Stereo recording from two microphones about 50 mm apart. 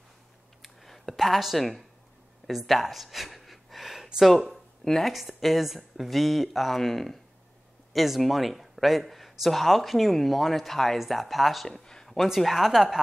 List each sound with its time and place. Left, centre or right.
0.6 s a sound: centre
2.4 s gasp: centre
4.8 s speech: centre
5.1 s speech: centre